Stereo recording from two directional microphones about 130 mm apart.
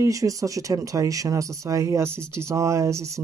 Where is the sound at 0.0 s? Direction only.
25° right (ahead or behind).